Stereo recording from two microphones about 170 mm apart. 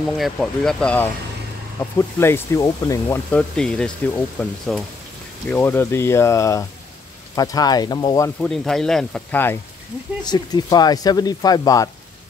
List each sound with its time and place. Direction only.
0.2 s speech: 5° left (ahead or behind); by 8.3 s 25° left (ahead or behind)
8.4 s speech: 5° left (ahead or behind)
10.2 s speech: 25° left (ahead or behind)